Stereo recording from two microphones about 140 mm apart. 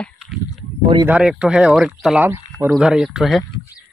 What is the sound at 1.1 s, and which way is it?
Speech, 5° right (ahead or behind).